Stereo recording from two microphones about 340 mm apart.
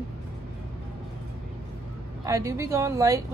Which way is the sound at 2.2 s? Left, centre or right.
Centre.